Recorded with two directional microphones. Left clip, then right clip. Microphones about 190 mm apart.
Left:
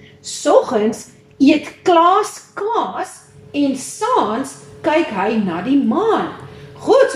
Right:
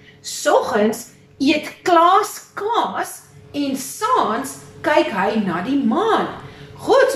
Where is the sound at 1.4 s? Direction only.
10° left (ahead or behind).